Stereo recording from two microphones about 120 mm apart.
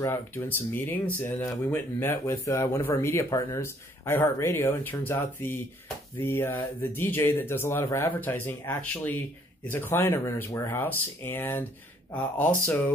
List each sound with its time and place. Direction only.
0.0 s speech: 20° left (ahead or behind)